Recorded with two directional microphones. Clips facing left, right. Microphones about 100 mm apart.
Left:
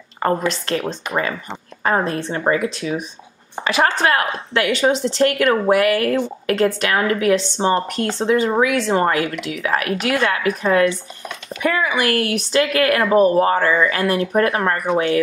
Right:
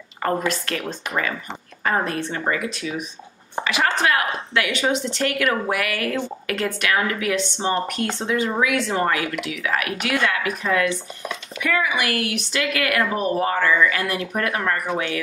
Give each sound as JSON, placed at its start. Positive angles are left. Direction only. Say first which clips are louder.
{"t": 0.2, "sound": "a woman's voice", "louder": "left 3 dB", "side_deg": 30}